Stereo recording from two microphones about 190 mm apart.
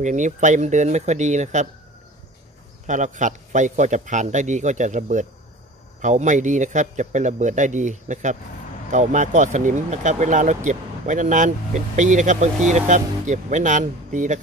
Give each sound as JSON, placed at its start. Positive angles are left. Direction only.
{"t": 0.0, "sound": "speech", "side_deg": -40}
{"t": 2.9, "sound": "speech", "side_deg": -40}